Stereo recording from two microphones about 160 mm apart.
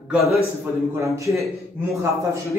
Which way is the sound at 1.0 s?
20° right (ahead or behind).